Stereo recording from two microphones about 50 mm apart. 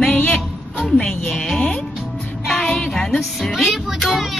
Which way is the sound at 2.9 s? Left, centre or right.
Centre.